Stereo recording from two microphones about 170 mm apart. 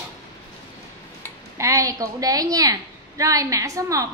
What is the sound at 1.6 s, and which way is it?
A woman's voice, 20° right (ahead or behind).